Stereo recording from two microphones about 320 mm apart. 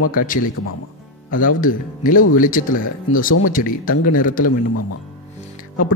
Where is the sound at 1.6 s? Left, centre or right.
Left.